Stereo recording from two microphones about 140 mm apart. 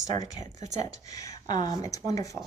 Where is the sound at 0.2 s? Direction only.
55° right (ahead or behind).